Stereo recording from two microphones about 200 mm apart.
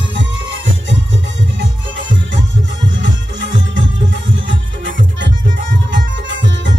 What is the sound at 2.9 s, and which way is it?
Music, 65° right (ahead or behind).